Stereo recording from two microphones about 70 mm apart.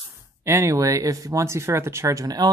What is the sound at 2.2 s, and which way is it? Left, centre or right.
Speech, right.